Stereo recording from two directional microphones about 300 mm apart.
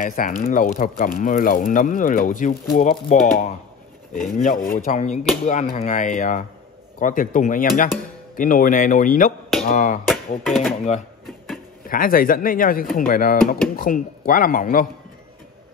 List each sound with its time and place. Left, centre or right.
0.0 s speech: left
10.4 s speech: centre
11.2 s a sound: centre
11.8 s speech: left